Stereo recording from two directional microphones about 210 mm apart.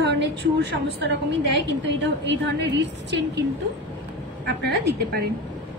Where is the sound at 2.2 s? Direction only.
55° right (ahead or behind).